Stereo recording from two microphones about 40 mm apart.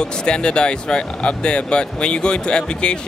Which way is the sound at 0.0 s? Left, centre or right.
Left.